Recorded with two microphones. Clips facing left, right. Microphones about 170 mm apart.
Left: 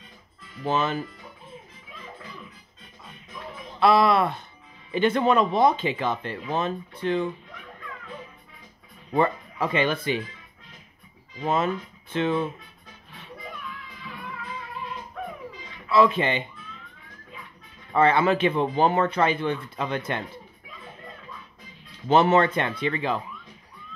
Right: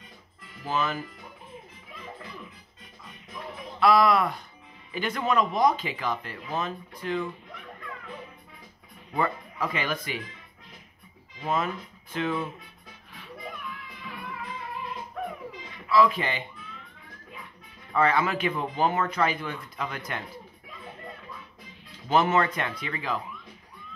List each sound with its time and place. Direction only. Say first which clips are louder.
0.7 s speech: left 4 dB; 25° left (ahead or behind)
3.8 s speech: left 2 dB; 25° left (ahead or behind)
9.1 s speech: left 5 dB; 25° left (ahead or behind)
11.4 s speech: left 4 dB; 25° left (ahead or behind)
15.9 s speech: left 2 dB; 25° left (ahead or behind)
17.9 s speech: left 4 dB; 25° left (ahead or behind)
22.1 s speech: left 4 dB; 30° left (ahead or behind)